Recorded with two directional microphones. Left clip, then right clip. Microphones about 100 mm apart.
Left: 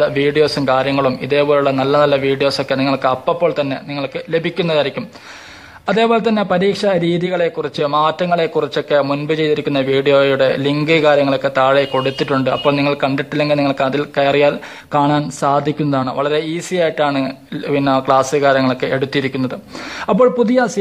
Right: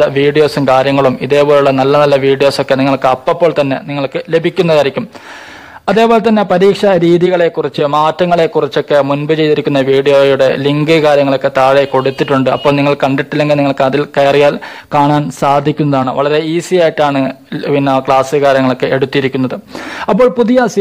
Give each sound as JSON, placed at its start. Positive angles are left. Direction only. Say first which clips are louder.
{"t": 0.0, "sound": "a man's voice", "louder": "right 5 dB", "side_deg": -35}